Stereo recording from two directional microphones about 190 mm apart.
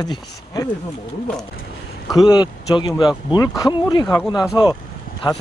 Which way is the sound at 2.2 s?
20° left (ahead or behind).